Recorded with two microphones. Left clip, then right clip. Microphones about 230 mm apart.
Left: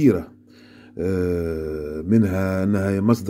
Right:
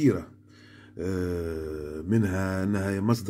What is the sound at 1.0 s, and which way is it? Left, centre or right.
Speech, centre.